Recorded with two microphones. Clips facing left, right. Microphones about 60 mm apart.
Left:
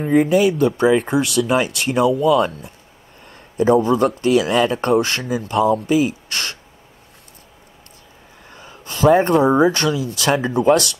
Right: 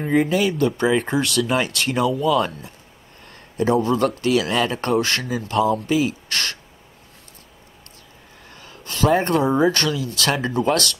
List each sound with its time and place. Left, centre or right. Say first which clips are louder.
0.0 s speech: left 3 dB; centre
0.3 s speech: left 4 dB; centre
3.3 s a sound: left 4 dB; centre
3.8 s speech: left 3 dB; centre
8.5 s a sound: left 2 dB; centre
8.9 s speech: left 5 dB; centre